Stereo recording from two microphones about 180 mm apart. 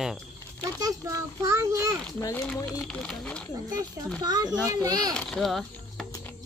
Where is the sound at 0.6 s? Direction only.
20° right (ahead or behind).